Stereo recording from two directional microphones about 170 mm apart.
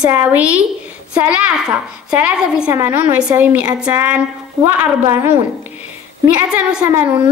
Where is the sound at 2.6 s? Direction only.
20° right (ahead or behind).